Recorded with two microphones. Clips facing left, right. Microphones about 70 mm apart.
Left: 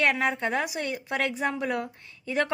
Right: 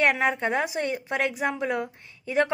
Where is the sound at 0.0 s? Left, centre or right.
Right.